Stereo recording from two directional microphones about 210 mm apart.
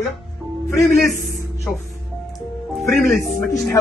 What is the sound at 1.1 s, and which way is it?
Speech, 40° right (ahead or behind).